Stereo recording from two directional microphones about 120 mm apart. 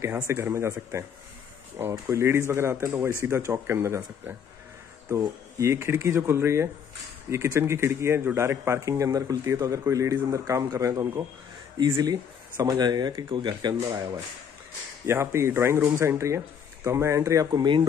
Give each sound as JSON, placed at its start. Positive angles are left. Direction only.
{"t": 0.0, "sound": "speech", "side_deg": -20}
{"t": 5.6, "sound": "speech", "side_deg": -20}
{"t": 15.0, "sound": "speech", "side_deg": -20}
{"t": 17.5, "sound": "speech", "side_deg": -40}